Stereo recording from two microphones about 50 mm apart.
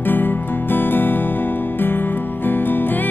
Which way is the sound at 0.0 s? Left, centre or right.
Left.